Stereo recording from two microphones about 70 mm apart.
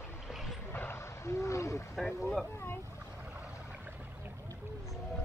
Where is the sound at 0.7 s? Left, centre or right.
Left.